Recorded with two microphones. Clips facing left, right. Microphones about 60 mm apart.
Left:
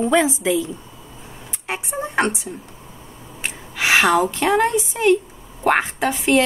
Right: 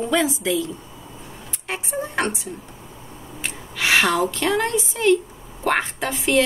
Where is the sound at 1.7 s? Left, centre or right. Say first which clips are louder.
Left 1 dB; left.